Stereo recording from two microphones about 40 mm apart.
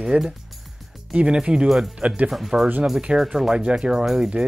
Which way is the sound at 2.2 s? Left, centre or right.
Centre.